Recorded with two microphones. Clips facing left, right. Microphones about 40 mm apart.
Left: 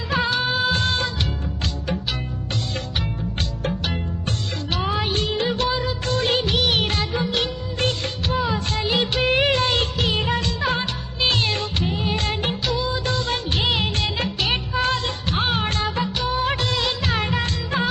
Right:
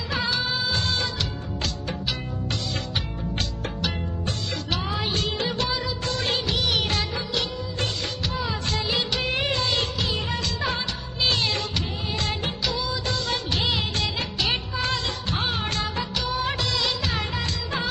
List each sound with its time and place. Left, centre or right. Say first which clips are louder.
0.1 s music: left 5 dB; left
4.6 s music: left 5 dB; left
5.9 s music of bollywood: left 5 dB; left
6.8 s music of bollywood: left 4 dB; left
7.3 s music of bollywood: left 3 dB; left
9.3 s music of bollywood: left 7 dB; left
14.8 s music: left 4 dB; left